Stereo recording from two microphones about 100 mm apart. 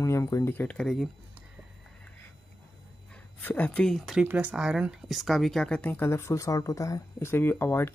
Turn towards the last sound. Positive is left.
turn(degrees=25)  # may be behind; listen again after turning